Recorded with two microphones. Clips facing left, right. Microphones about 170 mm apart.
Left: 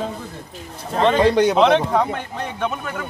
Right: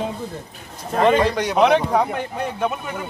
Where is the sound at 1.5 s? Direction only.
10° right (ahead or behind).